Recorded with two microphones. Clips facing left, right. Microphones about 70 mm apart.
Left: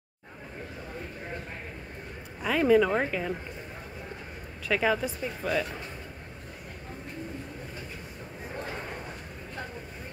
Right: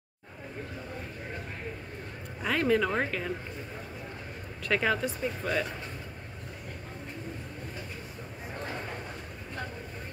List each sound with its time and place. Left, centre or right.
2.4 s speech: centre
4.6 s speech: centre